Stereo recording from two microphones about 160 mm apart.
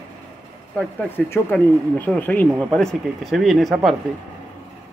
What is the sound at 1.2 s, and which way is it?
Speech, 5° left (ahead or behind).